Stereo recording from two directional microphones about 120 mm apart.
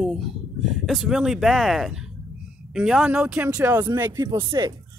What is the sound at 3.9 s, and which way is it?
Speech, 30° right (ahead or behind).